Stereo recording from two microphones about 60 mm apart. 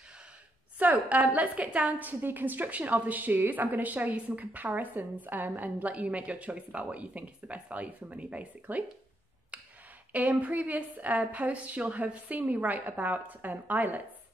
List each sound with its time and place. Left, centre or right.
0.7 s a woman's voice: right
10.1 s a woman's voice: right